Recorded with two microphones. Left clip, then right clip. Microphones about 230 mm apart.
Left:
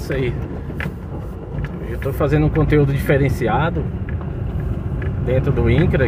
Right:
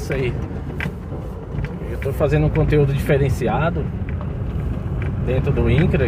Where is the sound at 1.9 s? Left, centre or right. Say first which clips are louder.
Left 1 dB; left.